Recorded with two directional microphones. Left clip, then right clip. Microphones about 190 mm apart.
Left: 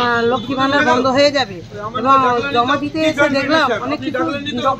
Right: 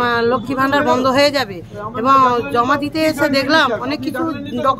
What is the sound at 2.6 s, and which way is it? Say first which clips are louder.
Speech: even; 15° right (ahead or behind).